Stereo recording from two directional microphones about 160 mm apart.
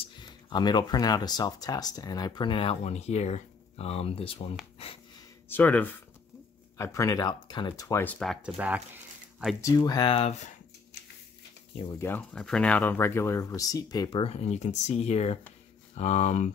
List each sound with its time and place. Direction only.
0.0 s speech: 25° left (ahead or behind)
5.5 s speech: 10° left (ahead or behind)
8.4 s speech: 10° right (ahead or behind)
9.6 s speech: 20° left (ahead or behind)
10.1 s speech: 40° left (ahead or behind)
11.7 s speech: 30° left (ahead or behind)
12.0 s speech: 10° left (ahead or behind)
14.2 s speech: 40° left (ahead or behind)